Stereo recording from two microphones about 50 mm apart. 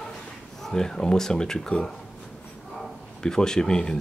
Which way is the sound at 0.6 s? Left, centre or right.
Centre.